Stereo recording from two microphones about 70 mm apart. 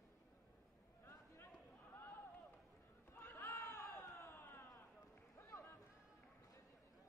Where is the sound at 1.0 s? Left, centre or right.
Left.